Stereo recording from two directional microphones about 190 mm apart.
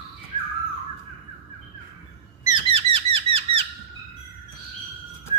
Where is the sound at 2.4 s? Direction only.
25° right (ahead or behind).